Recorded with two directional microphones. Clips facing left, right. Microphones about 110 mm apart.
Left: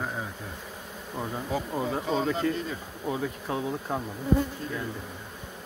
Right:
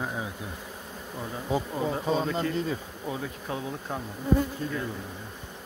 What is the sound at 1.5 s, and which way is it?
Speech, 25° right (ahead or behind).